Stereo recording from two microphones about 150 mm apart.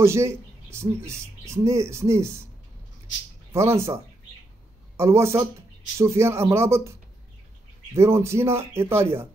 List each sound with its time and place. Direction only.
0.0 s speech: 20° right (ahead or behind)
3.5 s speech: 20° right (ahead or behind)